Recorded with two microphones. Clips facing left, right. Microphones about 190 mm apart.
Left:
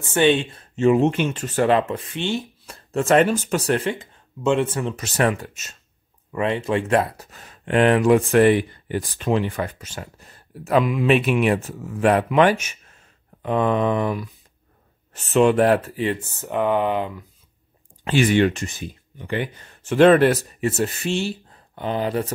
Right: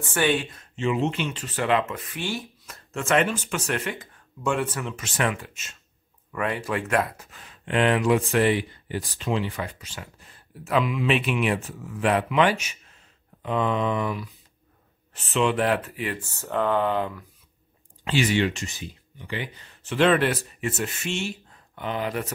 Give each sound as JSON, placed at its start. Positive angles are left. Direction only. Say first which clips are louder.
{"t": 0.0, "sound": "speech", "louder": "left 6 dB", "side_deg": 25}
{"t": 0.7, "sound": "speech", "louder": "left 8 dB", "side_deg": 45}
{"t": 1.8, "sound": "speech", "louder": "left 5 dB", "side_deg": 30}
{"t": 6.3, "sound": "speech", "louder": "left 5 dB", "side_deg": 25}
{"t": 15.3, "sound": "speech", "louder": "left 7 dB", "side_deg": 45}
{"t": 18.0, "sound": "speech", "louder": "left 5 dB", "side_deg": 50}